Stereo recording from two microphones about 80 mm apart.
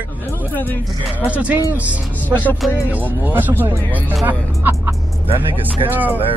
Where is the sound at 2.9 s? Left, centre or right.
Right.